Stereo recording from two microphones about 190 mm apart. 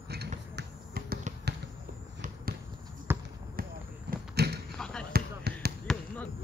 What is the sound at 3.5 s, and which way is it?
Basketball bounce, 50° right (ahead or behind).